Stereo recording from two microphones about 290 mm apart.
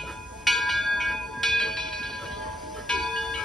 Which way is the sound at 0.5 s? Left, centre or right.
Centre.